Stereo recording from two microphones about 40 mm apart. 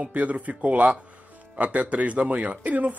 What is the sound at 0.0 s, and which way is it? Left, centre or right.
A man's voice, right.